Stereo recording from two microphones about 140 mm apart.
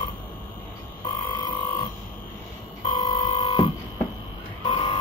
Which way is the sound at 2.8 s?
30° left (ahead or behind).